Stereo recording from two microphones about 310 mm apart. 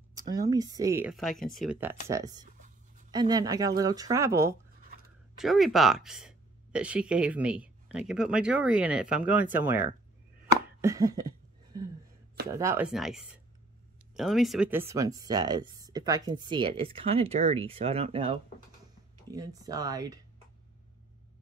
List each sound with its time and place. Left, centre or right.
0.1 s speech: centre
10.8 s a sound: centre
12.4 s speech: centre